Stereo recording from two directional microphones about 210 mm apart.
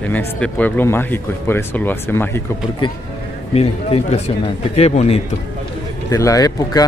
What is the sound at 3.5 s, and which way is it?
Speech, 30° left (ahead or behind).